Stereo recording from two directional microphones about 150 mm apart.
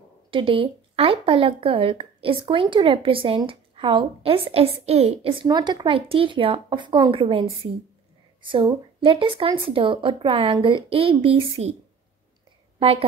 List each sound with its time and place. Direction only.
0.3 s speech: 35° right (ahead or behind)
5.5 s speech: 30° right (ahead or behind)
12.7 s a woman's voice: 40° right (ahead or behind)